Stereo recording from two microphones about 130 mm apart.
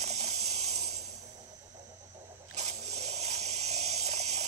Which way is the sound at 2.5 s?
55° right (ahead or behind).